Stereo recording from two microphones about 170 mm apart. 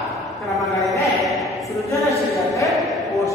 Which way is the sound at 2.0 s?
20° left (ahead or behind).